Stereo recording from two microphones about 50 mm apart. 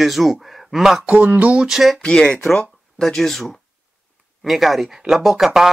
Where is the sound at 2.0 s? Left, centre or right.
Centre.